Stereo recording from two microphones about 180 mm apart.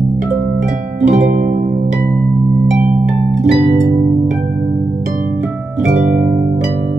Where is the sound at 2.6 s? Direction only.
5° right (ahead or behind).